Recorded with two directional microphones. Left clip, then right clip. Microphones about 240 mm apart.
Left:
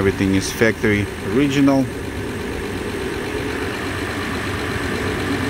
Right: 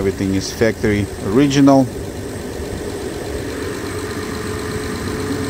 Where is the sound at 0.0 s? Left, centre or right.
Centre.